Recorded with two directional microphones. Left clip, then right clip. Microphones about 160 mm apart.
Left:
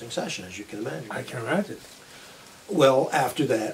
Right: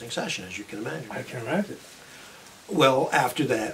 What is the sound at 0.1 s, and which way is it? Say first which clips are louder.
Speech: right 1 dB; centre (ahead or behind).